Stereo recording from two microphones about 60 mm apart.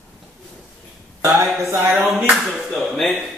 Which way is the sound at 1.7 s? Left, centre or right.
Right.